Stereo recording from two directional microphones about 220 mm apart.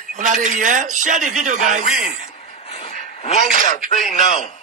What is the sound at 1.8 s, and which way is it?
Speech, 25° left (ahead or behind).